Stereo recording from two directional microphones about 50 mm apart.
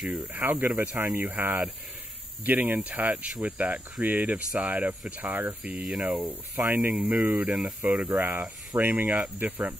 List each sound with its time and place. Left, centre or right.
0.1 s speech: right
5.6 s speech: right
7.8 s speech: right